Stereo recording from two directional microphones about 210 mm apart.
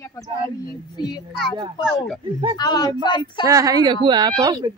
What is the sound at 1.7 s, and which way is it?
Speech, centre (ahead or behind).